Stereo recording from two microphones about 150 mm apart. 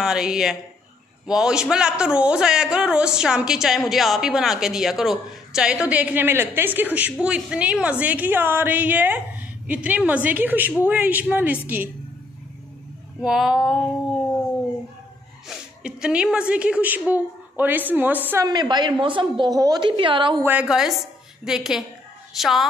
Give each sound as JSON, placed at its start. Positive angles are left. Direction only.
{"t": 0.0, "sound": "a man's voice", "side_deg": -5}
{"t": 13.2, "sound": "a man's voice", "side_deg": -5}
{"t": 15.4, "sound": "a woman's voice", "side_deg": -5}
{"t": 18.4, "sound": "a woman's voice", "side_deg": -30}
{"t": 20.4, "sound": "a man's voice", "side_deg": -5}